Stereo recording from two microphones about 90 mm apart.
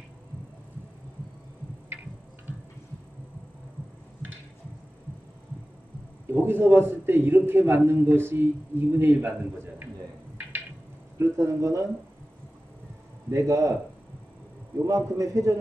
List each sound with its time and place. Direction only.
6.2 s a man's voice: 25° right (ahead or behind)
11.1 s speech: 30° right (ahead or behind)
13.3 s speech: 35° right (ahead or behind)
15.1 s speech: 40° right (ahead or behind)